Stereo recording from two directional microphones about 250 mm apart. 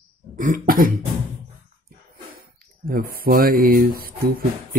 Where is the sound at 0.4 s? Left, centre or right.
Right.